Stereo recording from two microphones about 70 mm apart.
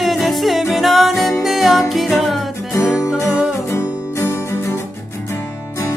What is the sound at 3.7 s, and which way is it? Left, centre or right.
Music, left.